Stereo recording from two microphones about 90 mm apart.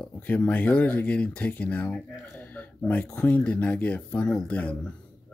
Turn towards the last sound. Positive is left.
turn(degrees=15)  # may be behind; listen again after turning